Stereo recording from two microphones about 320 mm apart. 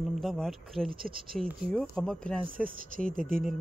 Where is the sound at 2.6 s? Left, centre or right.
Right.